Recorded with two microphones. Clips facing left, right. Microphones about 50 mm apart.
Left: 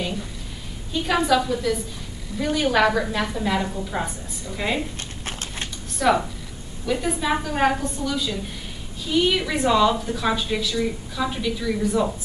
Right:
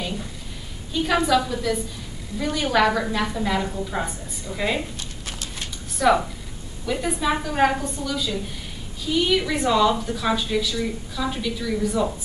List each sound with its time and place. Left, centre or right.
0.9 s a woman's voice: centre
5.2 s horse: left
5.9 s a woman's voice: centre